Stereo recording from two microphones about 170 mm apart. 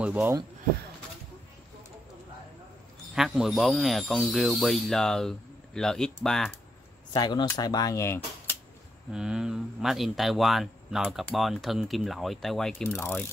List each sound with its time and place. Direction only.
0.0 s speech: 10° right (ahead or behind)
3.2 s speech: centre (ahead or behind)
7.1 s speech: 25° left (ahead or behind)
9.1 s speech: 5° right (ahead or behind)
12.8 s mechanisms: 15° left (ahead or behind)